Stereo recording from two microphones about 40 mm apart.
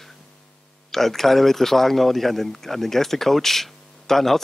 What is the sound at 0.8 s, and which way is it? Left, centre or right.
Speech, centre.